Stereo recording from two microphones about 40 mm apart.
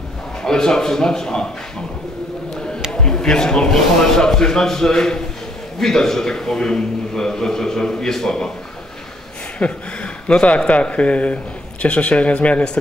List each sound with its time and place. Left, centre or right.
0.4 s a man's voice: centre
2.9 s a man's voice: centre
9.6 s speech: left